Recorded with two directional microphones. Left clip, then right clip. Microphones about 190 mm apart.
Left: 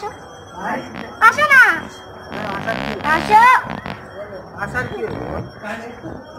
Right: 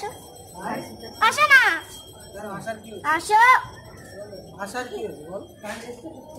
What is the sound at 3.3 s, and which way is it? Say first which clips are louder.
Speech: left 5 dB; 50° right (ahead or behind).